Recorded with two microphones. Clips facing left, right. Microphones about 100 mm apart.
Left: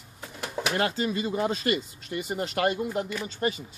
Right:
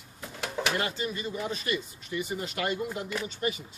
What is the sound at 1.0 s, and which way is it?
Speech, 80° left.